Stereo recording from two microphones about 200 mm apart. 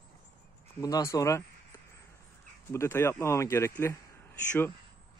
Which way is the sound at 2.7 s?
15° left (ahead or behind).